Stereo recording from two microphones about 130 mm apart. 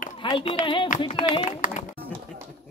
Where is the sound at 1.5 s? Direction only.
80° left.